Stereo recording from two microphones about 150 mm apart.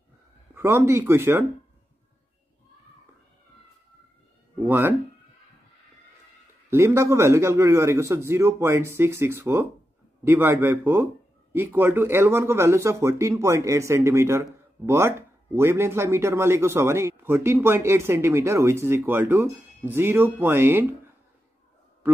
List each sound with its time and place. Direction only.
0.6 s speech: 15° right (ahead or behind)
4.6 s speech: 15° right (ahead or behind)
6.7 s speech: 20° right (ahead or behind)